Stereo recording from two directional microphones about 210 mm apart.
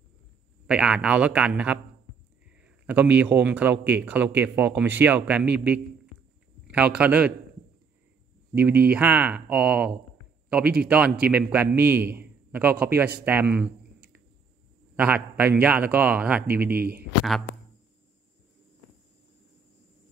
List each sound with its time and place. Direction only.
0.7 s a man's voice: 5° right (ahead or behind)
6.7 s speech: 5° right (ahead or behind)
8.5 s a man's voice: 10° right (ahead or behind)
15.0 s a man's voice: 5° right (ahead or behind)
16.6 s speech: 45° right (ahead or behind)